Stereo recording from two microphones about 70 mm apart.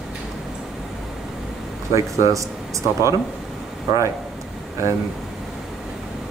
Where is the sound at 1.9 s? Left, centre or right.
Right.